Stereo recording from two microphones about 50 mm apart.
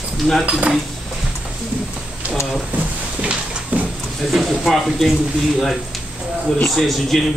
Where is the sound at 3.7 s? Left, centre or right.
Right.